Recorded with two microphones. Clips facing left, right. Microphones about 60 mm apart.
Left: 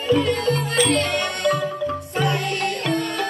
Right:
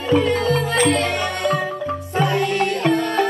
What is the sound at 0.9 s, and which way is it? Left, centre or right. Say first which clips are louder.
Music: right 1 dB; left.